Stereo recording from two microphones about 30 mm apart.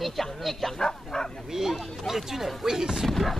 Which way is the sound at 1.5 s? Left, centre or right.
Centre.